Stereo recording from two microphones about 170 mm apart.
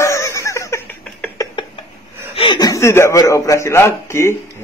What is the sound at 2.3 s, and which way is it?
A man's voice, 30° left (ahead or behind).